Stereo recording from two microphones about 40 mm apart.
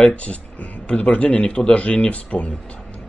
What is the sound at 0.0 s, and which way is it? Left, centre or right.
Speech, left.